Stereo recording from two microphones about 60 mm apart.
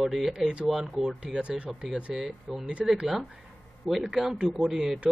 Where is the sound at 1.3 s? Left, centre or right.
Centre.